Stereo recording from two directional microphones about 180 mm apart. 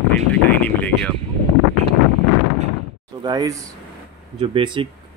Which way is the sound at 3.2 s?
20° right (ahead or behind).